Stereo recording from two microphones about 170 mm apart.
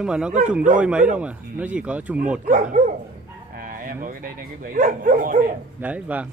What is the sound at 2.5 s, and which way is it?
Speech, 50° right (ahead or behind).